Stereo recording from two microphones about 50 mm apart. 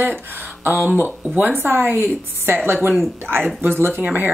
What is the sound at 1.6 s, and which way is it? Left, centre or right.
A woman's voice, right.